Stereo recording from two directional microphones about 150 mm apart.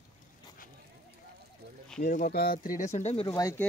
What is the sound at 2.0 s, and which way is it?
Speech, 90° left.